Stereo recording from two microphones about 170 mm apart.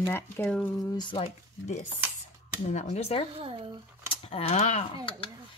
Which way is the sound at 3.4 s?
30° right (ahead or behind).